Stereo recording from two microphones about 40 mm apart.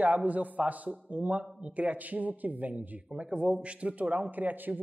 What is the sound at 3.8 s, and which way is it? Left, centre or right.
Speech, right.